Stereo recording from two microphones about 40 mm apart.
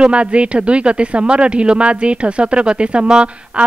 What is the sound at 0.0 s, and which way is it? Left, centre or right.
Speech, right.